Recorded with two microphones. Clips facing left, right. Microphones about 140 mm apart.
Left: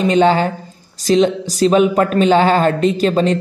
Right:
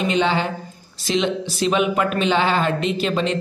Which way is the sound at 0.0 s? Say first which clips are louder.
Left 7 dB; 40° left (ahead or behind).